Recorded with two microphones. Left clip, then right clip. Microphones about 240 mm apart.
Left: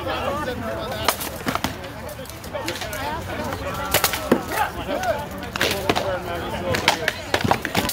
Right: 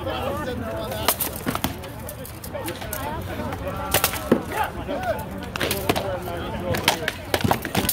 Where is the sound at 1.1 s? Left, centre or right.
Right.